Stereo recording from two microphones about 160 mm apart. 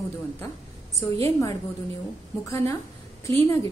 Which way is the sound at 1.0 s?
20° left (ahead or behind).